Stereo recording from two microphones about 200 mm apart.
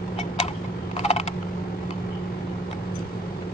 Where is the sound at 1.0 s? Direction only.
35° left (ahead or behind).